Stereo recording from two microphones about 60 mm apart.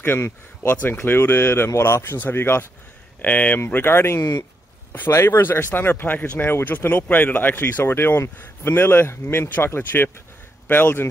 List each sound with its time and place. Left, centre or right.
0.0 s speech: left
3.2 s speech: left
3.6 s speech: left
5.3 s speech: left